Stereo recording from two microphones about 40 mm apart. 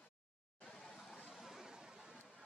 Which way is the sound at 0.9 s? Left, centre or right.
Centre.